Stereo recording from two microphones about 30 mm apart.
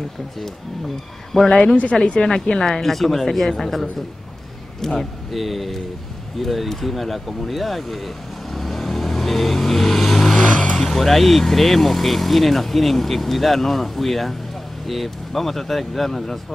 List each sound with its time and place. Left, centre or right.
1.3 s speech: centre
2.2 s speech: left
2.8 s speech: centre
4.8 s speech: centre
5.3 s speech: centre
8.5 s vehicle: centre
10.4 s vehicle: left
10.8 s speech: centre